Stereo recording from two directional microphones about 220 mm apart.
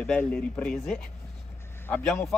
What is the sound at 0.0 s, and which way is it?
Speech, 5° left (ahead or behind).